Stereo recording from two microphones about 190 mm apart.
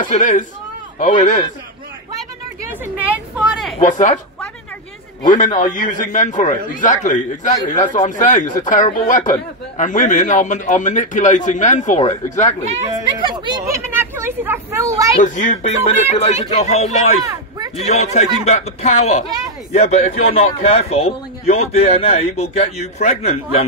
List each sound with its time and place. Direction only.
0.0 s speech: 40° left (ahead or behind)
2.8 s a woman's voice: 10° right (ahead or behind)
3.8 s speech: 40° left (ahead or behind)
5.2 s a man's voice: 45° left (ahead or behind)
12.6 s a sound: 35° right (ahead or behind)
13.3 s a sound: 25° right (ahead or behind)
15.1 s speech: 40° left (ahead or behind)
17.2 s a sound: 20° right (ahead or behind)
17.7 s speech: 35° left (ahead or behind)